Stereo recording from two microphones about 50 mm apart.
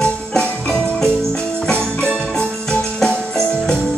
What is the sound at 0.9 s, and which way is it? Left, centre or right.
Music, centre.